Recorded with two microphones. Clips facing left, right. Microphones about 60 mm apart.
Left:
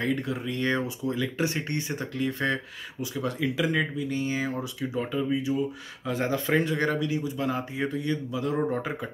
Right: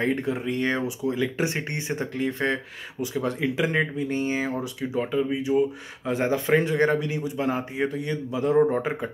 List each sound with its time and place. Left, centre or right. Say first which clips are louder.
0.0 s speech: right 3 dB; right